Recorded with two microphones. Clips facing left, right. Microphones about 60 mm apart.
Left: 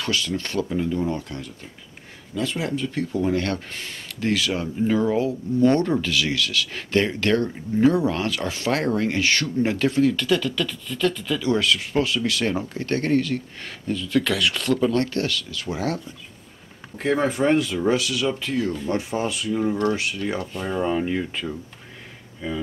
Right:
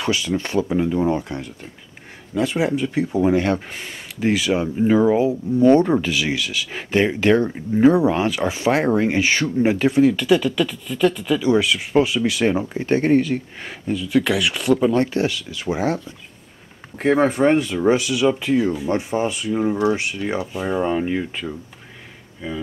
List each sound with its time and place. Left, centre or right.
0.0 s speech: centre
17.3 s speech: centre